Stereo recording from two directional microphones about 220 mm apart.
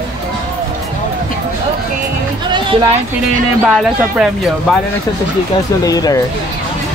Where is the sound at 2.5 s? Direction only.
20° right (ahead or behind).